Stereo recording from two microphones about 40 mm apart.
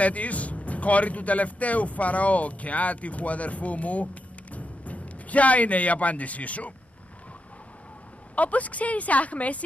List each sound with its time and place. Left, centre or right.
0.0 s speech: left
8.4 s a woman's voice: left